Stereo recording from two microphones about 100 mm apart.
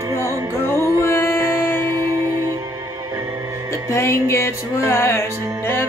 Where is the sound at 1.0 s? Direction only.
25° left (ahead or behind).